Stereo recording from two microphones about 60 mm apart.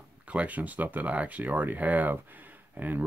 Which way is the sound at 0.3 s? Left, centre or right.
Right.